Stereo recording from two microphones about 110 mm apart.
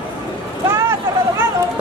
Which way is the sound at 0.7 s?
20° right (ahead or behind).